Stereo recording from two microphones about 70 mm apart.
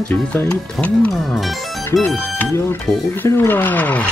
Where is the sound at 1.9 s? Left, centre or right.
Left.